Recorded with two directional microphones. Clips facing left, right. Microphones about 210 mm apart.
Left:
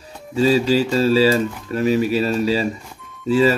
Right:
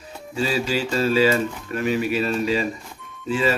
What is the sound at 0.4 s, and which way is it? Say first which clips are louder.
Speech: left 7 dB; 35° left (ahead or behind).